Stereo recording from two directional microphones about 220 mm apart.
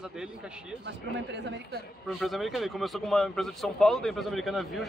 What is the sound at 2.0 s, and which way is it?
Speech, centre (ahead or behind).